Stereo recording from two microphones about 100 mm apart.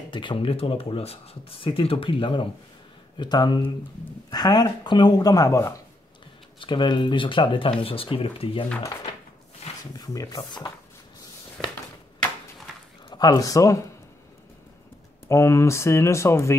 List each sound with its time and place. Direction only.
0.1 s speech: 55° left (ahead or behind)
3.2 s speech: 45° left (ahead or behind)
6.6 s speech: 50° left (ahead or behind)
9.6 s a sound: 90° left
9.9 s speech: 40° left (ahead or behind)
13.1 s speech: 45° left (ahead or behind)
15.2 s speech: 30° left (ahead or behind)